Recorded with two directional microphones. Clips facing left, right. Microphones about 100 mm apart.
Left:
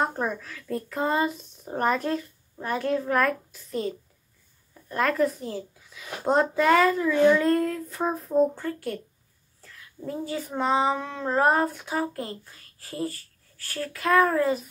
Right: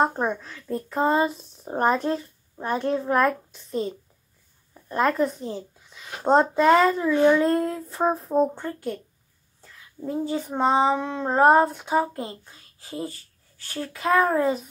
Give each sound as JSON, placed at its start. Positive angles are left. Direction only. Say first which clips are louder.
{"t": 0.0, "sound": "speech", "louder": "right 4 dB", "side_deg": -25}
{"t": 9.6, "sound": "child singing", "louder": "right 4 dB", "side_deg": -20}
{"t": 11.4, "sound": "speech", "louder": "right 8 dB", "side_deg": -30}